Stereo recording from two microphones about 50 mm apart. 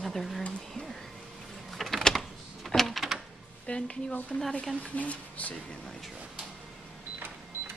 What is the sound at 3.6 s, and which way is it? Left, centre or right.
Speech, left.